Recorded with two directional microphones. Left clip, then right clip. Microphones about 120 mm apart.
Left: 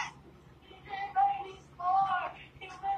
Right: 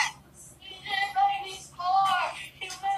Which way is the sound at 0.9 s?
25° right (ahead or behind).